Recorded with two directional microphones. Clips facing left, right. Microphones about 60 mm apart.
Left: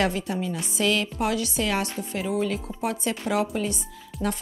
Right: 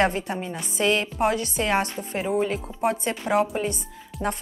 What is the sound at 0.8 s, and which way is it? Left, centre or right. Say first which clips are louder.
Music: right 2 dB; right.